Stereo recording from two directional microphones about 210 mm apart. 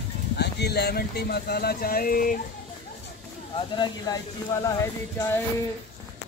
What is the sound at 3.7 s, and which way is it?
Speech, 20° left (ahead or behind).